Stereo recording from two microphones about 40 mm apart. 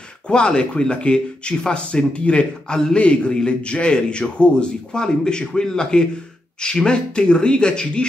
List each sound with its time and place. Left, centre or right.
0.3 s speech: left